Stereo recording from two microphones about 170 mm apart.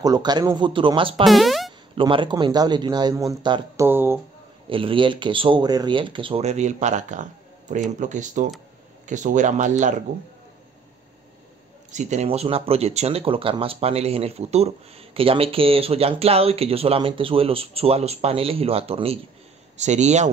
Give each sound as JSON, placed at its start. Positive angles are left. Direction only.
{"t": 0.0, "sound": "speech", "side_deg": -25}
{"t": 1.2, "sound": "speech", "side_deg": 0}
{"t": 2.0, "sound": "speech", "side_deg": -30}
{"t": 3.8, "sound": "speech", "side_deg": -15}
{"t": 4.6, "sound": "speech", "side_deg": -30}
{"t": 11.9, "sound": "speech", "side_deg": -45}